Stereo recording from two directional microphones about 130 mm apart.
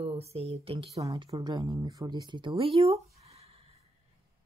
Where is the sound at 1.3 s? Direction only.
30° right (ahead or behind).